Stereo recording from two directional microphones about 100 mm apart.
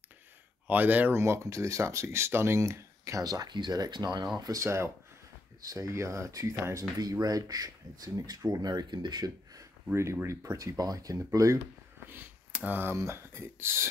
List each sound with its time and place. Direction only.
0.7 s speech: 15° right (ahead or behind)
1.2 s speech: 30° right (ahead or behind)
4.6 s speech: 30° right (ahead or behind)
10.2 s speech: 30° right (ahead or behind)
12.1 s speech: 20° right (ahead or behind)